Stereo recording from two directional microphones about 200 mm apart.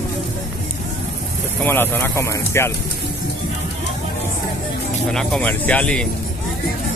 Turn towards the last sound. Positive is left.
turn(degrees=5)  # may be behind; listen again after turning